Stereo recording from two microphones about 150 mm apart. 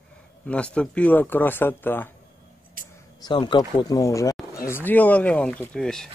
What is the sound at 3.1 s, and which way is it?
Speech, 30° left (ahead or behind).